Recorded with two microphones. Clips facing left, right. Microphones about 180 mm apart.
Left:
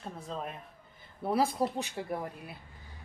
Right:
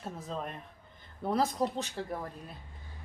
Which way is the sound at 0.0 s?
Centre (ahead or behind).